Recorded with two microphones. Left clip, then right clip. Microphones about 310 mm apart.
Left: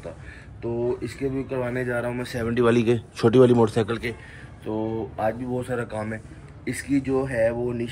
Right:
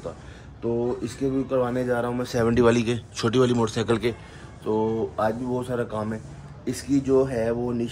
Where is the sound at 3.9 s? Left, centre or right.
Centre.